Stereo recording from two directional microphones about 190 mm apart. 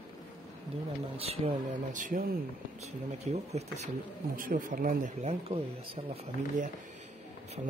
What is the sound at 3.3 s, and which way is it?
Speech, 35° right (ahead or behind).